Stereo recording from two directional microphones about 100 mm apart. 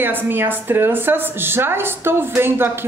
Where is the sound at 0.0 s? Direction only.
20° right (ahead or behind).